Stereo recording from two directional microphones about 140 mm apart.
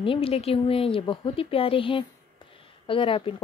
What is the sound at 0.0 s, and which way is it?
Speech, 40° left (ahead or behind).